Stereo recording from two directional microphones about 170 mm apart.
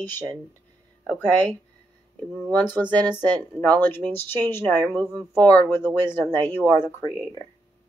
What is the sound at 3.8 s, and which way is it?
Speech, 10° left (ahead or behind).